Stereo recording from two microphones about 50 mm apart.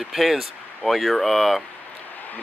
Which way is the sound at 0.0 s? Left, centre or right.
Centre.